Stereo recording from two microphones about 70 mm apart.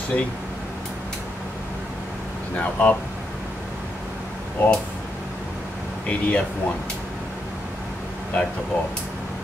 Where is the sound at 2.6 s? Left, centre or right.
Left.